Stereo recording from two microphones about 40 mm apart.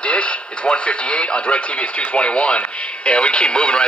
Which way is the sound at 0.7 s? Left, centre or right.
Left.